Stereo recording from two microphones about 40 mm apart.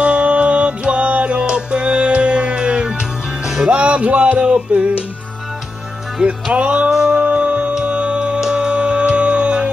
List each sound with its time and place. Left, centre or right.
0.0 s music: right
6.2 s music: right
6.9 s a sound: centre
7.7 s music: right